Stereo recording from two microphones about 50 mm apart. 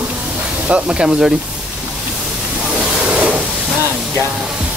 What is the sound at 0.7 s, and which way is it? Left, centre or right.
Speech, right.